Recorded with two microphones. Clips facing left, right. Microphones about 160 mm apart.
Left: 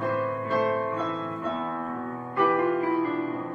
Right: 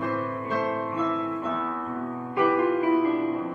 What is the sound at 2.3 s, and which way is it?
Music, 10° right (ahead or behind).